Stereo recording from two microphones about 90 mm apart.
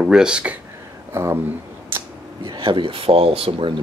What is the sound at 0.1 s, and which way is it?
Speech, 10° right (ahead or behind).